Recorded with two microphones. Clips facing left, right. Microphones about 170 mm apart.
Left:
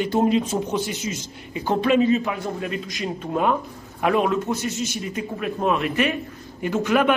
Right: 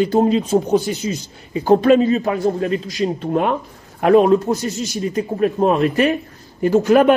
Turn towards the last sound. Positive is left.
turn(degrees=-35)  # may be behind; listen again after turning